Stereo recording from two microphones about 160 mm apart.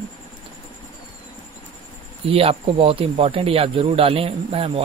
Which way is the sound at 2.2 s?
35° right (ahead or behind).